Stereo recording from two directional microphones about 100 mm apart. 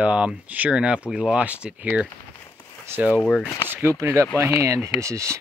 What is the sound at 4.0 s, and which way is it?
Speech, 30° right (ahead or behind).